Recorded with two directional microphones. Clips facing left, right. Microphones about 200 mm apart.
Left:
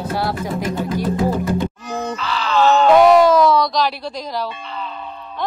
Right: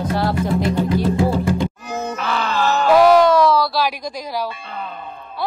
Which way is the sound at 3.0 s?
Centre (ahead or behind).